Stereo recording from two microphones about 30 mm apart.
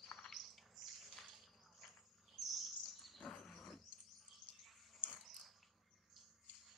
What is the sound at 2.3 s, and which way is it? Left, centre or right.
Chirp, centre.